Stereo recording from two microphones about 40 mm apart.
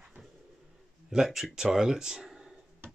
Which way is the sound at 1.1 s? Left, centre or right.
Centre.